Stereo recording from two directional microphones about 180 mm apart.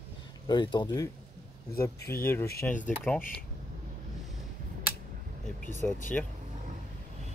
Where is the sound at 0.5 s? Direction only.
25° left (ahead or behind).